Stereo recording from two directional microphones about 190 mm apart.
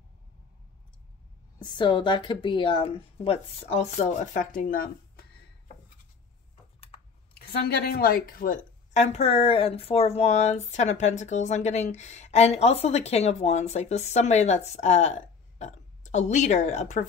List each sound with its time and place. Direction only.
1.6 s a woman's voice: 25° left (ahead or behind); by 5.2 s 50° left (ahead or behind)
7.6 s a woman's voice: 55° left (ahead or behind); by 17.0 s 40° left (ahead or behind)